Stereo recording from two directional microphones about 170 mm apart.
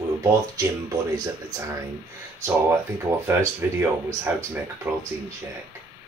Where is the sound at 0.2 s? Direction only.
20° right (ahead or behind).